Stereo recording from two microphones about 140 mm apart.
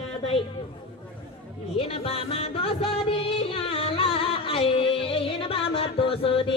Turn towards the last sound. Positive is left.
turn(degrees=40)  # may be behind; listen again after turning